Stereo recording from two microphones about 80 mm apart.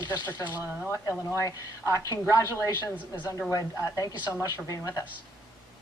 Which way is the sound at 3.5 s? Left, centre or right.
Left.